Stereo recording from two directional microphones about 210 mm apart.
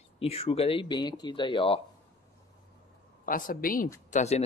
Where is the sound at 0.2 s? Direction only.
30° left (ahead or behind).